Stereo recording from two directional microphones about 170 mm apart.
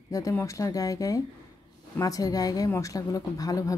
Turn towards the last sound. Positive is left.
turn(degrees=20)  # may be behind; listen again after turning